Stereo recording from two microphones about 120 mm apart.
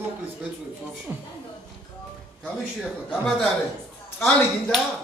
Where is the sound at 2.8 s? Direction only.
5° right (ahead or behind).